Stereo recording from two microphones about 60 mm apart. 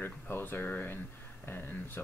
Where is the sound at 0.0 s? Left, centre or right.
Left.